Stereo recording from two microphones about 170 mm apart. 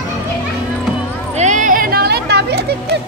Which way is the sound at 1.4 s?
45° right (ahead or behind).